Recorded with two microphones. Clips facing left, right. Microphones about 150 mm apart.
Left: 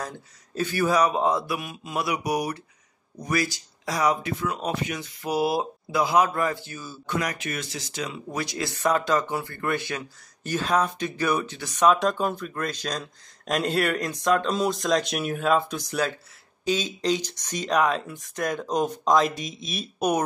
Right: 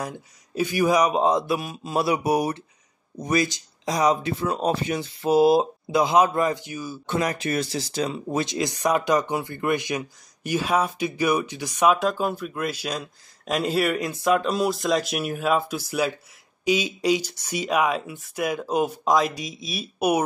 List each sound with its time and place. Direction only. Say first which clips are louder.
0.0 s speech: right 3 dB; 15° right (ahead or behind)
1.5 s speech: right 5 dB; 30° right (ahead or behind); by 7.0 s 15° right (ahead or behind)
7.1 s speech: right 4 dB; 25° right (ahead or behind); by 20.2 s 10° right (ahead or behind)